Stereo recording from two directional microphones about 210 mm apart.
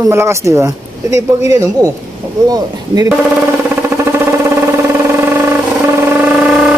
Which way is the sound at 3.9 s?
10° right (ahead or behind).